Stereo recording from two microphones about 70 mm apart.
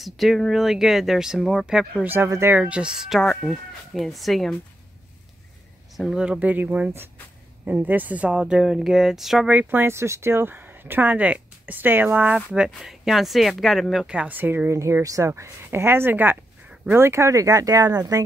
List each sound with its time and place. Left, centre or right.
0.0 s speech: centre
2.2 s speech: right
2.5 s speech: centre
3.2 s speech: centre
5.9 s speech: centre
6.4 s speech: right; by 9.5 s centre
9.5 s speech: right
12.7 s speech: centre
14.0 s speech: centre
14.4 s speech: right
14.7 s a woman's voice: right